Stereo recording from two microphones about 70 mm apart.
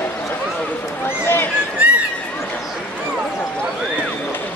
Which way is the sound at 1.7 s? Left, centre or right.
Centre.